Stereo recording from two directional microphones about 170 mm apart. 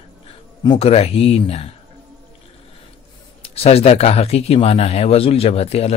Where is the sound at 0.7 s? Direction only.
35° left (ahead or behind).